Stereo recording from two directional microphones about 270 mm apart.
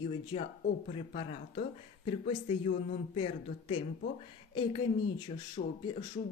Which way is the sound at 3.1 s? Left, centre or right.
Centre.